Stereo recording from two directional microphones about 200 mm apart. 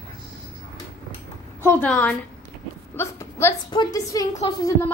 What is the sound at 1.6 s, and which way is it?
A woman's voice, 10° left (ahead or behind).